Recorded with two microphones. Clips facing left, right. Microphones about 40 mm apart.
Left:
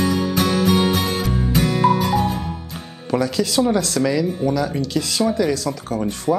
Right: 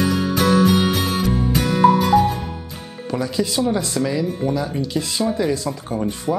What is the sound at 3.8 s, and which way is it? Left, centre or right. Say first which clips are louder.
Speech: left 2 dB; left.